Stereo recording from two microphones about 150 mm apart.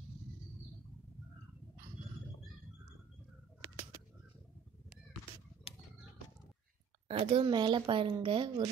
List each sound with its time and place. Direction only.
7.1 s speech: 40° right (ahead or behind)